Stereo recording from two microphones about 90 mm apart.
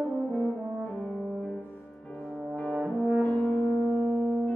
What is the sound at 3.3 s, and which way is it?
Music, 15° left (ahead or behind).